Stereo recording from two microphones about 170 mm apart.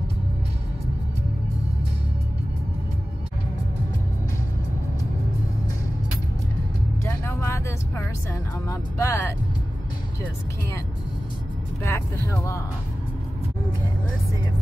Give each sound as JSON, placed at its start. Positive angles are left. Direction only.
{"t": 7.1, "sound": "music", "side_deg": 15}
{"t": 11.8, "sound": "speech", "side_deg": 15}